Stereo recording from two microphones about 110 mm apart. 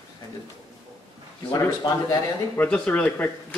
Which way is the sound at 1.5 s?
40° left (ahead or behind).